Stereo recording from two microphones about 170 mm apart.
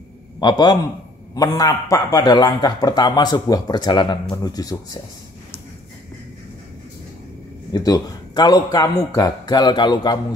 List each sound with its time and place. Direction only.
0.4 s a man's voice: 25° left (ahead or behind)
7.7 s a man's voice: 25° left (ahead or behind)